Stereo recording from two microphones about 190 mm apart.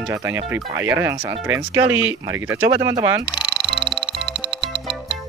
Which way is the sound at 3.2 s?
25° left (ahead or behind).